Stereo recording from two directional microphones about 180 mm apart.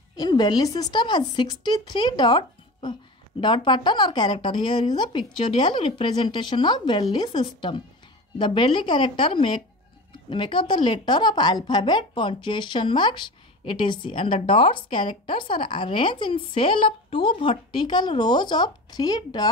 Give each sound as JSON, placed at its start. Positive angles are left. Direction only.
{"t": 0.1, "sound": "speech", "side_deg": 20}